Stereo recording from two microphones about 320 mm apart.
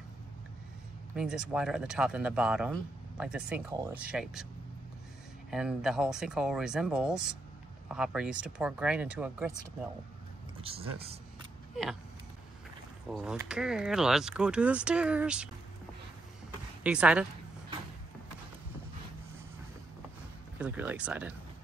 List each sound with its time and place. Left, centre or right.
1.1 s speech: centre
5.5 s speech: centre
10.6 s speech: centre
11.7 s a sound: centre
13.1 s speech: centre
16.8 s speech: centre
20.5 s speech: centre